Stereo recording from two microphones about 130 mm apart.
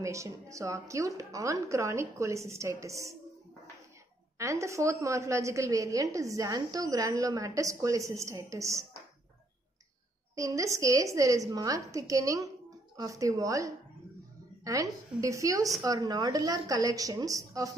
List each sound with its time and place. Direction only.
0.0 s a woman's voice: 25° right (ahead or behind)
4.4 s a woman's voice: 25° right (ahead or behind)
10.3 s a woman's voice: 25° right (ahead or behind)